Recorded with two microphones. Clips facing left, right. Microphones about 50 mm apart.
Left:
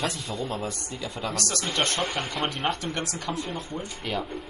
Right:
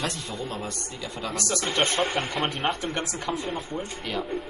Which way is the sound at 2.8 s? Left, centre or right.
Centre.